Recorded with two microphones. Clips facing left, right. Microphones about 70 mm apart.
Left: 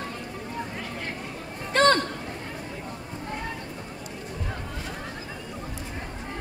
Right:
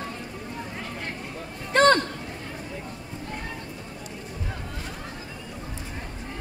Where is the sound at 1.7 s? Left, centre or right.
Right.